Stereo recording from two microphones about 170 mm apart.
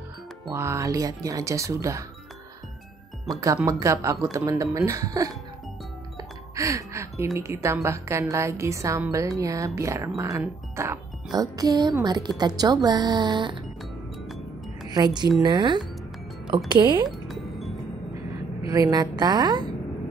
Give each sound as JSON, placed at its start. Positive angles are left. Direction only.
{"t": 0.5, "sound": "a woman's voice", "side_deg": -15}
{"t": 3.6, "sound": "a woman's voice", "side_deg": -20}
{"t": 6.5, "sound": "music", "side_deg": -20}
{"t": 7.3, "sound": "a woman's voice", "side_deg": -15}
{"t": 14.9, "sound": "a woman's voice", "side_deg": -25}
{"t": 17.3, "sound": "music", "side_deg": 0}
{"t": 18.7, "sound": "a woman's voice", "side_deg": -20}